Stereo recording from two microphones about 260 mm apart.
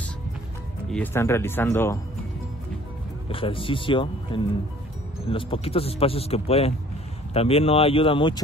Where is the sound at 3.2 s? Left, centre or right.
Left.